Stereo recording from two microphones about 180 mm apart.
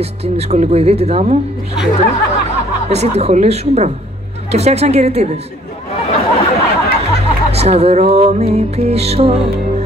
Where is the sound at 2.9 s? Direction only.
35° right (ahead or behind).